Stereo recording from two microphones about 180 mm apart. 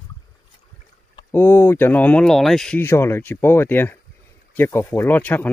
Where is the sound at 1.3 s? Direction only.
10° left (ahead or behind).